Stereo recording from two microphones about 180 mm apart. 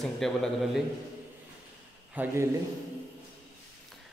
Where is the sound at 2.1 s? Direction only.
10° right (ahead or behind).